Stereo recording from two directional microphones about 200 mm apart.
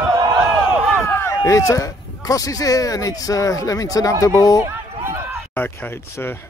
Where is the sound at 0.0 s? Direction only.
15° right (ahead or behind).